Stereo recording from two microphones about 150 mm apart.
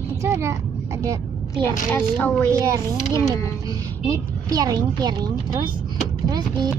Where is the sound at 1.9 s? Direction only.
10° left (ahead or behind).